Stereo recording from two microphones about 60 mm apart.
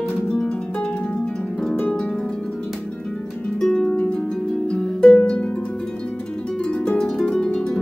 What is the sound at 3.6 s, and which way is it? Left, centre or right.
Harp, centre.